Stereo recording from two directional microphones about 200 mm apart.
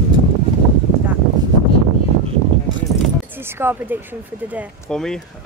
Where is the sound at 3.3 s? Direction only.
10° right (ahead or behind).